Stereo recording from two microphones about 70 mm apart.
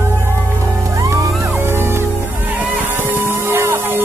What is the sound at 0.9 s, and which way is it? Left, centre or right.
Music, right.